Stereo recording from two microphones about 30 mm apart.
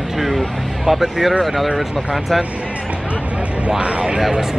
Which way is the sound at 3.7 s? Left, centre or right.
Right.